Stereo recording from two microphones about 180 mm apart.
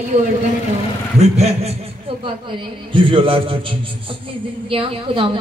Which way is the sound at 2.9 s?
30° right (ahead or behind).